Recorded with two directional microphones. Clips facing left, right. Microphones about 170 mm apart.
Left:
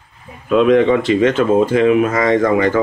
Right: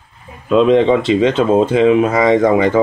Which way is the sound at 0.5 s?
25° right (ahead or behind).